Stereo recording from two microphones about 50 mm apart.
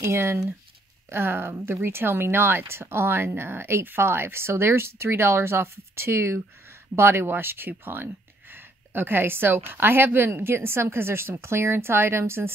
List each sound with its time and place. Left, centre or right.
0.0 s speech: right